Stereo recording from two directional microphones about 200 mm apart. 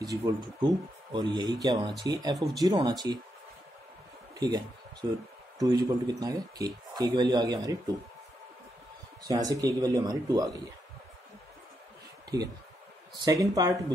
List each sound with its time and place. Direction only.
0.2 s speech: 20° right (ahead or behind)
2.3 s speech: centre (ahead or behind)
2.6 s speech: 20° right (ahead or behind)
4.4 s speech: 20° right (ahead or behind)
9.3 s speech: 15° right (ahead or behind)
13.2 s speech: 20° right (ahead or behind)